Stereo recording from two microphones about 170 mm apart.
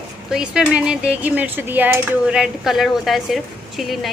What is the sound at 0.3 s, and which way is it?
Speech, 5° right (ahead or behind).